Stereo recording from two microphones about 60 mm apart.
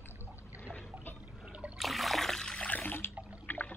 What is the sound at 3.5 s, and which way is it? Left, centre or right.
Water, left.